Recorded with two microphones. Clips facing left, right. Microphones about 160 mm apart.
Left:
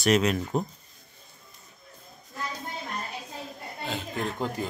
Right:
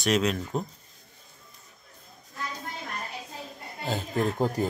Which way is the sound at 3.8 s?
40° right (ahead or behind).